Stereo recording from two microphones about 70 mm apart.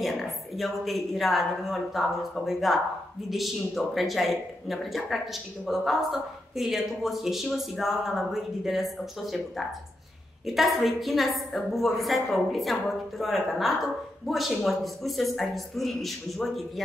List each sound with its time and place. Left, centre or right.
0.0 s speech: centre